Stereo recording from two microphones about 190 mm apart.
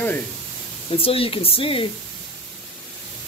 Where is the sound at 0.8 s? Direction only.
30° left (ahead or behind).